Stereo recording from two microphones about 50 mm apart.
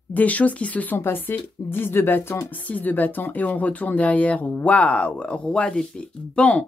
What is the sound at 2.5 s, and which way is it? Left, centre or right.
Speech, left.